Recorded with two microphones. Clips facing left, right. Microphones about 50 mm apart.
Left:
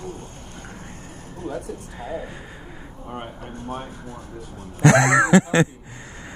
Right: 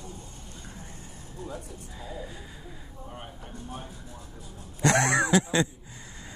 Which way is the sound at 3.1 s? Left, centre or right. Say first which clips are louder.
Left 10 dB; left.